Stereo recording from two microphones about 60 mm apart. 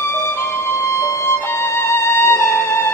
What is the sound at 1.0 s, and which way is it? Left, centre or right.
Music, left.